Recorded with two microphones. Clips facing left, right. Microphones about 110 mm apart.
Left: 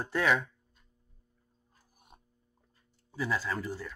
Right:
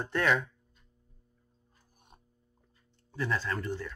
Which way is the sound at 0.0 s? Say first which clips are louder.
Even; 5° left (ahead or behind).